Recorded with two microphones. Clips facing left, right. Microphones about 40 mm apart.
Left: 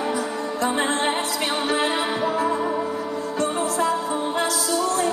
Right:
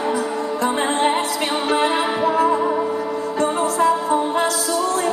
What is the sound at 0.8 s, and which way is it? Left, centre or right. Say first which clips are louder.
Music: right 4 dB; right.